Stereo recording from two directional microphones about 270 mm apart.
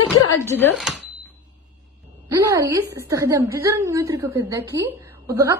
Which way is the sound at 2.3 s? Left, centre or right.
Centre.